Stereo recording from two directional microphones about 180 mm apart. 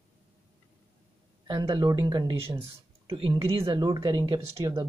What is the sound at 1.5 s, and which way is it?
Speech, 25° right (ahead or behind).